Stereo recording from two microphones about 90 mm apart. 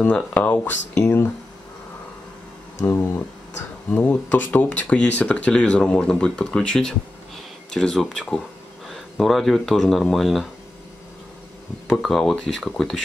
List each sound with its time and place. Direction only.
0.0 s speech: 15° left (ahead or behind)
2.9 s a sound: 25° left (ahead or behind)
3.9 s speech: 20° left (ahead or behind); by 10.5 s centre (ahead or behind)
11.9 s speech: centre (ahead or behind)